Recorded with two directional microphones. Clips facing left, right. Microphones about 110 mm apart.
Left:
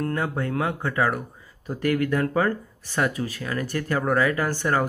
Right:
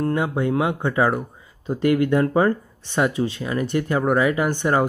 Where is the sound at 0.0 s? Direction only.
20° right (ahead or behind).